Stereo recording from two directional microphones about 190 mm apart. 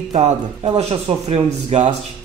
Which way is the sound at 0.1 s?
35° right (ahead or behind).